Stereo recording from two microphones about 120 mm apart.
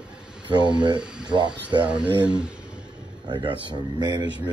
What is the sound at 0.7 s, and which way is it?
Speech, 40° right (ahead or behind).